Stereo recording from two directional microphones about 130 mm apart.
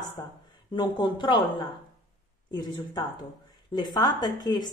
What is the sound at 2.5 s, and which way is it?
A woman's voice, 35° left (ahead or behind).